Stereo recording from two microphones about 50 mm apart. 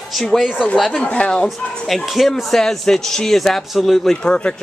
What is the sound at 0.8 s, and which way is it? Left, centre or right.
Speech, centre.